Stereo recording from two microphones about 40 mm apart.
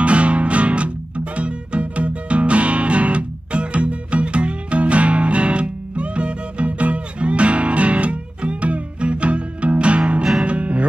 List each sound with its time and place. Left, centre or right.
0.0 s music: right